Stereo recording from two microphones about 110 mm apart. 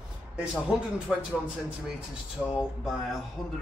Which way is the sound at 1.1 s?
5° right (ahead or behind).